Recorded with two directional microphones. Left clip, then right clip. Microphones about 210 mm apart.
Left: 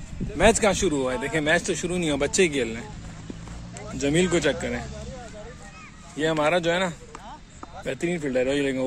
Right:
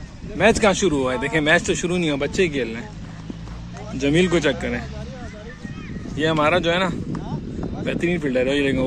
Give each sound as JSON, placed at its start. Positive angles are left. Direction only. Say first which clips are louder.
{"t": 0.4, "sound": "speech", "louder": "right 3 dB", "side_deg": 5}
{"t": 2.0, "sound": "speech", "louder": "left 1 dB", "side_deg": 20}
{"t": 4.0, "sound": "speech", "louder": "right 4 dB", "side_deg": 10}
{"t": 6.1, "sound": "speech", "louder": "right 4 dB", "side_deg": 10}